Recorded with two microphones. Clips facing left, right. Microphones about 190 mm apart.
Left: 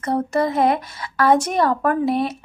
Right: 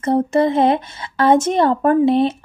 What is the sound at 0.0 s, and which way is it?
Speech, 25° right (ahead or behind).